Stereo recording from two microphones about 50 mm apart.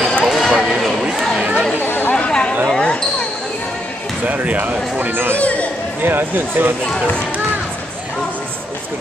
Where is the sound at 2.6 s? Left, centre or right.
Centre.